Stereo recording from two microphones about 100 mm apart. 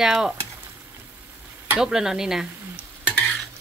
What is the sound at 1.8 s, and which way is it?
Speech, 5° right (ahead or behind).